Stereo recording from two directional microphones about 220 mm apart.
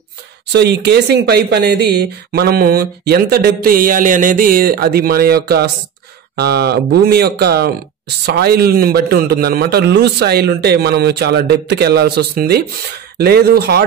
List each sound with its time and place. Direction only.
0.5 s speech: 50° right (ahead or behind)